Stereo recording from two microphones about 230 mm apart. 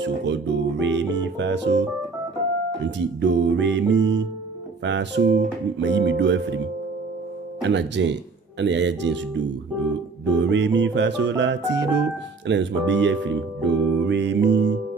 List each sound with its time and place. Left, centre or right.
0.0 s music: right
2.8 s music: right
7.7 s music: right
10.5 s music: right